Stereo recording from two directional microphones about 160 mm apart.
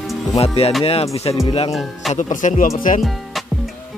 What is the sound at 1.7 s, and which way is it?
Speech, centre (ahead or behind).